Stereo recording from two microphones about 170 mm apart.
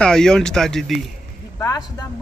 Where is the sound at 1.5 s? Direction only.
20° left (ahead or behind).